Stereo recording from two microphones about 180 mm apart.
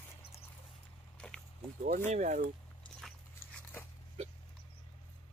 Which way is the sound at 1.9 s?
40° right (ahead or behind).